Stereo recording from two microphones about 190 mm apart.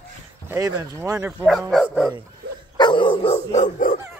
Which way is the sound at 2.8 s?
25° left (ahead or behind).